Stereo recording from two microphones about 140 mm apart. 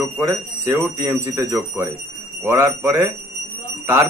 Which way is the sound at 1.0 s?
15° right (ahead or behind).